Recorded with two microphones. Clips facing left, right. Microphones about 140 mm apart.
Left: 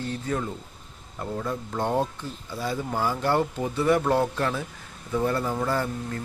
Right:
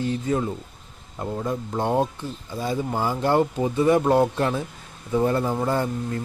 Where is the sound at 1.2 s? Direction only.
15° right (ahead or behind).